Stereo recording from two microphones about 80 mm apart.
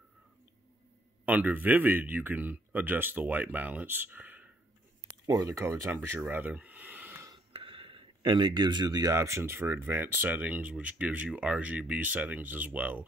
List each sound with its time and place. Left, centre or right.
1.2 s speech: centre
5.2 s speech: right
5.9 s speech: right
6.3 s a sound: centre
7.7 s a sound: right
9.1 s speech: right; by 13.0 s centre